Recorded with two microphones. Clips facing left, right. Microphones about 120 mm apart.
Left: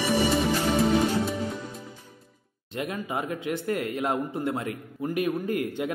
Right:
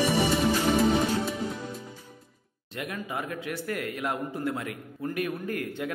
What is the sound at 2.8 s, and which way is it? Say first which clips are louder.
A man's voice: left 3 dB; 25° left (ahead or behind).